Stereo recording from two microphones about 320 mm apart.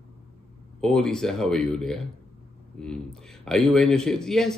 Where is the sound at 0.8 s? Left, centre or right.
Centre.